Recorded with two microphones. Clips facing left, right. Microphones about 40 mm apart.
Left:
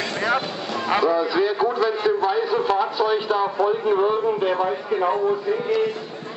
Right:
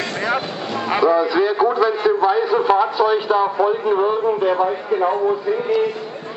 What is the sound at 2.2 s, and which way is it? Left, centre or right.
A man's voice, centre.